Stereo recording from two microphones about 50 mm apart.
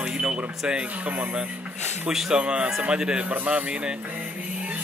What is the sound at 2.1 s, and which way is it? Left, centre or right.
Speech, centre.